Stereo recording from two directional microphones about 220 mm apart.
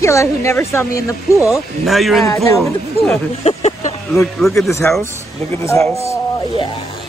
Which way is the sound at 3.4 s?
30° left (ahead or behind).